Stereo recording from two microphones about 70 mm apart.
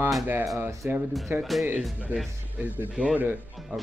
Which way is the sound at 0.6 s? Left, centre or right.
Right.